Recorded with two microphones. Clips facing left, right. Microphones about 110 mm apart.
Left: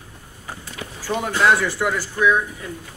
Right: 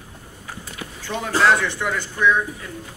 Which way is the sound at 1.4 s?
5° left (ahead or behind).